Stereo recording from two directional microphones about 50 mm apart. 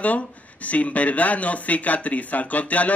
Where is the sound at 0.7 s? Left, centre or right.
Left.